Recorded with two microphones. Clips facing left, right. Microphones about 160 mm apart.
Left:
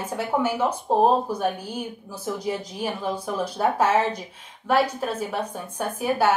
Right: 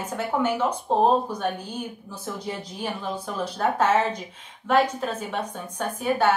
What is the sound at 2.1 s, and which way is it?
A woman's voice, 10° left (ahead or behind).